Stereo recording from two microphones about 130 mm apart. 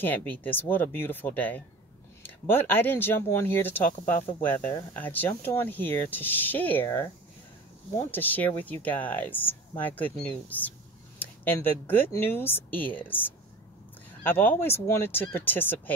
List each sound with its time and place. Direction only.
0.0 s speech: 15° left (ahead or behind)